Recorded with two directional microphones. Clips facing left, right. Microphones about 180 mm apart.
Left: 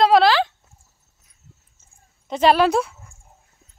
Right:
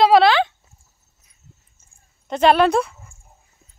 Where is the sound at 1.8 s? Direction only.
Centre (ahead or behind).